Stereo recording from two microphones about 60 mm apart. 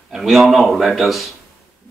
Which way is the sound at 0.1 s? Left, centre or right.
Centre.